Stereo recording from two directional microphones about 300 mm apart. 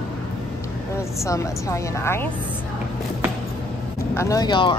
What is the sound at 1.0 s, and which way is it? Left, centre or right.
A woman's voice, centre.